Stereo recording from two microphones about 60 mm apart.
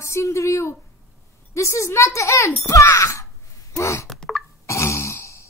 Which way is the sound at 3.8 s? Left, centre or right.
Left.